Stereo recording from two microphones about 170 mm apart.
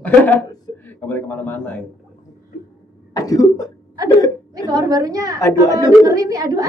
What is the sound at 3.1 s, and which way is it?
Speech, 20° left (ahead or behind).